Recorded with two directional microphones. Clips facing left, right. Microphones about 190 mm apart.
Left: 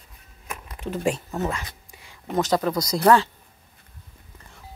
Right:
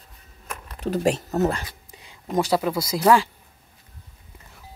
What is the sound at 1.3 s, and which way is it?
Speech, 40° right (ahead or behind).